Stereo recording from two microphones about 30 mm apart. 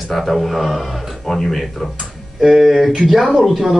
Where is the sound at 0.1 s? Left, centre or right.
Centre.